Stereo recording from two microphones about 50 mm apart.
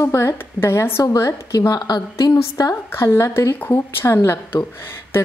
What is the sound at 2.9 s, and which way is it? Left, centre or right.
Speech, left.